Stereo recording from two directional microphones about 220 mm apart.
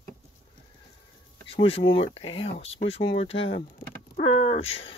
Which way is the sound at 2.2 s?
25° left (ahead or behind).